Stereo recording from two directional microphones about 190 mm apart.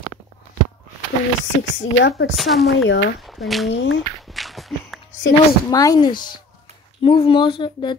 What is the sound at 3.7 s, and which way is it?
Speech, 80° left.